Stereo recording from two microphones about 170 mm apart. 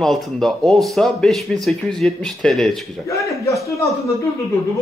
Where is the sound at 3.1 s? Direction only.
20° left (ahead or behind).